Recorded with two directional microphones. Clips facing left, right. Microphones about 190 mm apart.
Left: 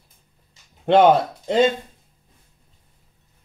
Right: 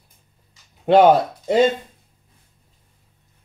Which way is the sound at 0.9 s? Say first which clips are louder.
Right 1 dB; 10° right (ahead or behind).